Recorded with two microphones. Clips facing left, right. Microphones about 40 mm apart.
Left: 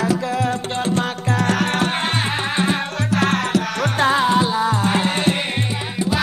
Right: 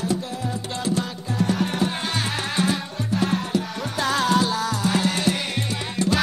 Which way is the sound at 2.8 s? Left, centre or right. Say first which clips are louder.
Left 5 dB; left.